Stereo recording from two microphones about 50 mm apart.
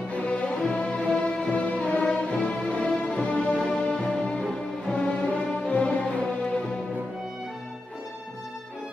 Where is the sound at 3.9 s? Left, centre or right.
Centre.